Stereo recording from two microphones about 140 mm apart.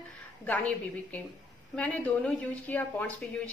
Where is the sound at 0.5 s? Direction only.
10° left (ahead or behind).